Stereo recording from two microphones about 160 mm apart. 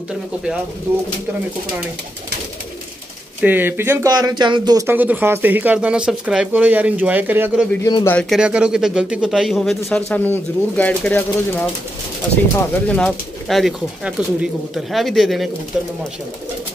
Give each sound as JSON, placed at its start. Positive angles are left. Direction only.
{"t": 3.3, "sound": "speech", "side_deg": -10}
{"t": 4.8, "sound": "speech", "side_deg": -10}
{"t": 7.8, "sound": "speech", "side_deg": 20}
{"t": 8.2, "sound": "speech", "side_deg": 0}
{"t": 12.8, "sound": "speech", "side_deg": 5}